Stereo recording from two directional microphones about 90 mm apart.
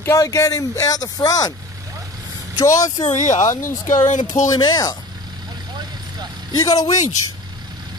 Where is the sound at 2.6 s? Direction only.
40° left (ahead or behind).